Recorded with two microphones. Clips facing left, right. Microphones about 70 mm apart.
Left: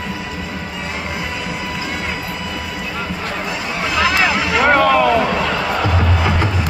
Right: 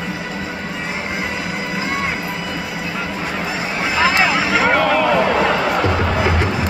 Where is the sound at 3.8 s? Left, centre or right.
Centre.